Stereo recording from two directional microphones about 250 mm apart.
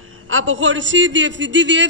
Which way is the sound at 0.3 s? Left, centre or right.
Right.